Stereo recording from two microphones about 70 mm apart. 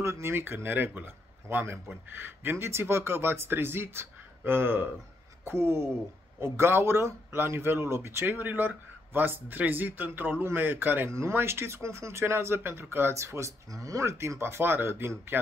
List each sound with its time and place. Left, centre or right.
0.0 s speech: right
8.4 s speech: right
11.1 s speech: right